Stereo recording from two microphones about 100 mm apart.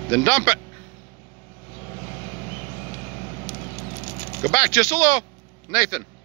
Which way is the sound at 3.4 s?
45° left (ahead or behind).